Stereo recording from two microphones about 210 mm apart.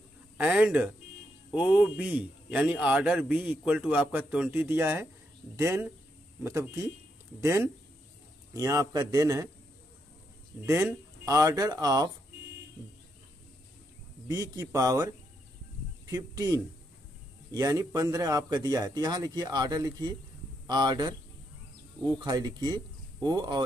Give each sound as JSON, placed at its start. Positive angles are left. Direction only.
{"t": 0.4, "sound": "a man's voice", "side_deg": -5}
{"t": 10.6, "sound": "speech", "side_deg": -10}
{"t": 14.2, "sound": "speech", "side_deg": -15}
{"t": 16.1, "sound": "speech", "side_deg": -15}